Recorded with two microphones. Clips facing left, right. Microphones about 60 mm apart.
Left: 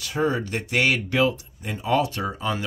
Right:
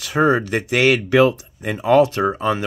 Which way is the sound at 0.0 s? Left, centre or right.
Right.